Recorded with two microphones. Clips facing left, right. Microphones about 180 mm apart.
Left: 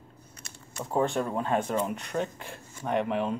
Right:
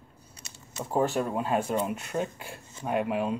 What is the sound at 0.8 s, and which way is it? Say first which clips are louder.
Speech: right 1 dB; 5° right (ahead or behind).